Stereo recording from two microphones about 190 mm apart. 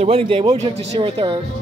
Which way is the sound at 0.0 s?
30° right (ahead or behind).